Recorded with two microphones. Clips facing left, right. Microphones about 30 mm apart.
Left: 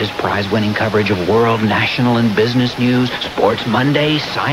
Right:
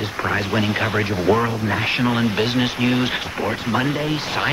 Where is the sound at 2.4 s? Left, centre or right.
Centre.